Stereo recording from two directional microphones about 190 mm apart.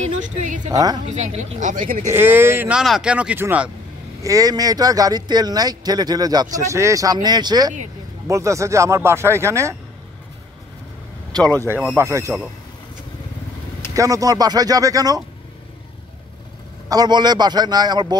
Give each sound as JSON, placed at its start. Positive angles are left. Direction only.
{"t": 0.0, "sound": "a sound", "side_deg": -40}
{"t": 0.7, "sound": "speech", "side_deg": -20}
{"t": 1.0, "sound": "speech", "side_deg": -35}
{"t": 2.0, "sound": "speech", "side_deg": -10}
{"t": 11.6, "sound": "speech", "side_deg": -10}
{"t": 13.9, "sound": "speech", "side_deg": -15}
{"t": 16.9, "sound": "speech", "side_deg": -20}